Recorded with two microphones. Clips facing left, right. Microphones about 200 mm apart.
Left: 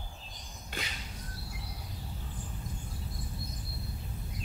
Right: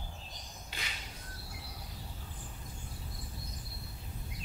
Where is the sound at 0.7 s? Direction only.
50° left (ahead or behind).